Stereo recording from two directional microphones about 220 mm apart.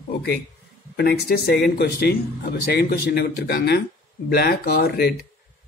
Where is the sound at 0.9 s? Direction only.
45° left (ahead or behind).